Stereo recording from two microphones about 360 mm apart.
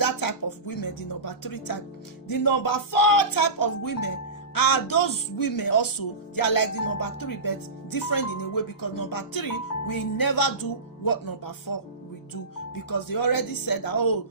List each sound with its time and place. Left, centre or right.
0.0 s speech: left
12.9 s speech: left